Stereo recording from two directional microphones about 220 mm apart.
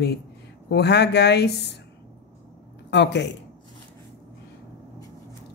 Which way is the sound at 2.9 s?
50° left (ahead or behind).